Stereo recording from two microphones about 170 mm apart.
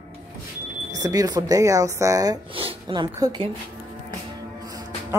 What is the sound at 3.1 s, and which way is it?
Speech, 20° right (ahead or behind).